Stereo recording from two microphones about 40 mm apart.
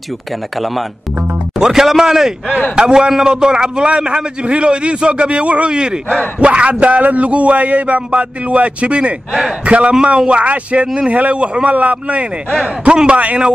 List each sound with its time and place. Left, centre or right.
1.6 s a man's voice: centre; by 13.4 s right